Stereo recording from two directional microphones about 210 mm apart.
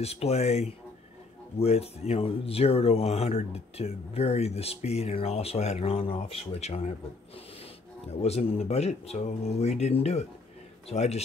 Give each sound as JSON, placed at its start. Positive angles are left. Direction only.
{"t": 0.0, "sound": "speech", "side_deg": 30}